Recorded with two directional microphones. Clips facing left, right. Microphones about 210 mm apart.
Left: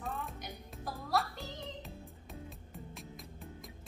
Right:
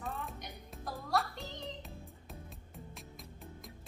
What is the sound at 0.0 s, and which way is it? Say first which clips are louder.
Music: left 1 dB; centre (ahead or behind).